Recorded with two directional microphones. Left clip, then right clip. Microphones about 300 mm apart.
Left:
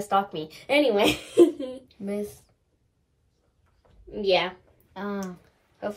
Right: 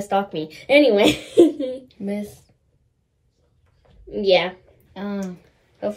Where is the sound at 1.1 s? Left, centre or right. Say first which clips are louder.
Right 4 dB; centre.